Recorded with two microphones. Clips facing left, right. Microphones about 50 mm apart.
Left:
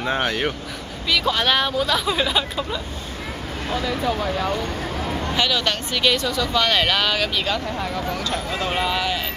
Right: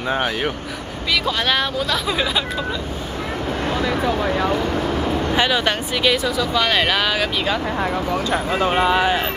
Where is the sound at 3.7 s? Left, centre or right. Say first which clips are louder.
Right 1 dB; right.